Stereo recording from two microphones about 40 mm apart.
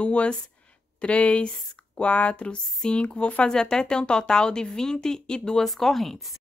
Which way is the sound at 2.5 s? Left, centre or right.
Centre.